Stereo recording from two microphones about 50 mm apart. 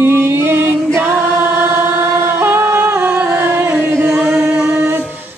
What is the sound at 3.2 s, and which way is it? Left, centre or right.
Singing, right.